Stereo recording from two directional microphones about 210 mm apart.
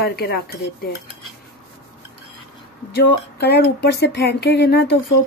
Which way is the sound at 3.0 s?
50° left (ahead or behind).